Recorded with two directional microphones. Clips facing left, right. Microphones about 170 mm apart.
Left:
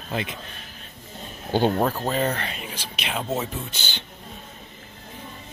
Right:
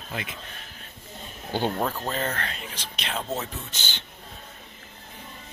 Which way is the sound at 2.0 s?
15° left (ahead or behind).